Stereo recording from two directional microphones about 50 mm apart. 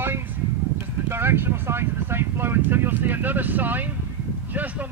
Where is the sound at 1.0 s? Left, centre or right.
Right.